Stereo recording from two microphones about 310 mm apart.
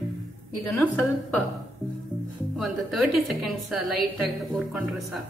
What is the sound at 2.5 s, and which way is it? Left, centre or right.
A woman's voice, centre.